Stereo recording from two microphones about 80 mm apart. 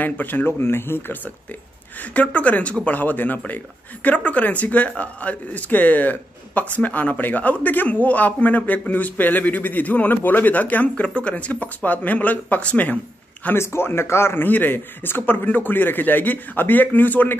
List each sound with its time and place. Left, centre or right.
0.0 s speech: left
2.1 s speech: centre
13.6 s speech: left